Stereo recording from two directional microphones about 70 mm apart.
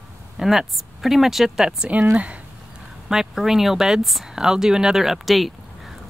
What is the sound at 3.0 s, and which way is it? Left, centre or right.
Speech, centre.